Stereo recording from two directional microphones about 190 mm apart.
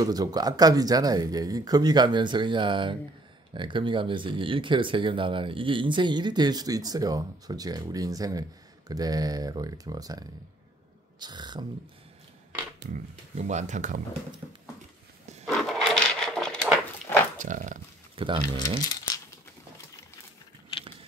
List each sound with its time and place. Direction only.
0.0 s speech: 20° right (ahead or behind)
12.9 s speech: 35° right (ahead or behind)
15.4 s a sound: centre (ahead or behind)
17.4 s speech: 45° right (ahead or behind)
18.1 s speech: 25° right (ahead or behind)
18.9 s crumpling: 20° left (ahead or behind)